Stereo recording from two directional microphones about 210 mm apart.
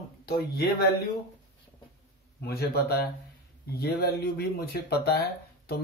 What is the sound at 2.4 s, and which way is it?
Speech, 50° left (ahead or behind).